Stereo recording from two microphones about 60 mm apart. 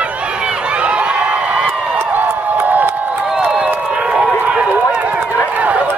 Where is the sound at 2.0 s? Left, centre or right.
Right.